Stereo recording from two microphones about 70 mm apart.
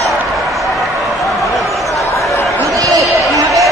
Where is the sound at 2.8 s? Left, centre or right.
Right.